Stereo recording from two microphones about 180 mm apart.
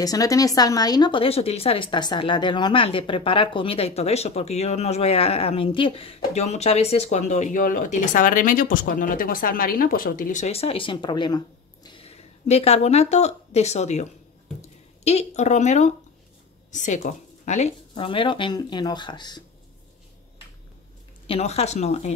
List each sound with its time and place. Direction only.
0.0 s a woman's voice: 20° left (ahead or behind); by 14.0 s 40° left (ahead or behind)
15.0 s a woman's voice: 40° left (ahead or behind)
21.3 s a woman's voice: 35° left (ahead or behind)